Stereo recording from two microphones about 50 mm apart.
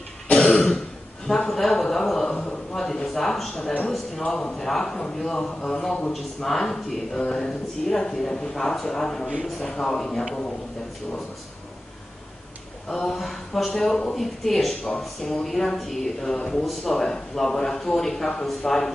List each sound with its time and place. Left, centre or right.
0.3 s throat clearing: centre
1.2 s speech: centre
12.8 s speech: centre